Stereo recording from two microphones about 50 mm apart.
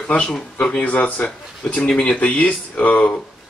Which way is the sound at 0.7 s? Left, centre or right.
Left.